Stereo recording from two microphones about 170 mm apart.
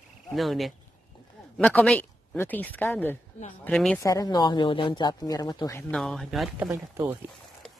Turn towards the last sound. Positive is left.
turn(degrees=0)  # may be behind; listen again after turning